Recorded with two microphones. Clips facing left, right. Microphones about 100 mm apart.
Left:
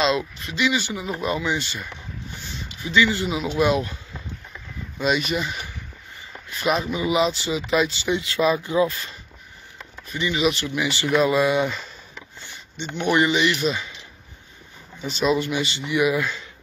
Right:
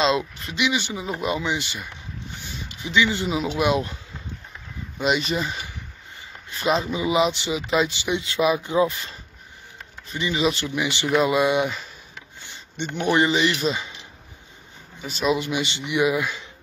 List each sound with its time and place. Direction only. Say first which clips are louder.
0.6 s speech: left 1 dB; 20° right (ahead or behind)
2.4 s a sound: left 1 dB; 20° right (ahead or behind)
3.4 s speech: left 3 dB; 15° right (ahead or behind)
13.0 s speech: even; 30° right (ahead or behind)
15.0 s speech: left 1 dB; centre (ahead or behind)
15.3 s speech: left 2 dB; 15° right (ahead or behind)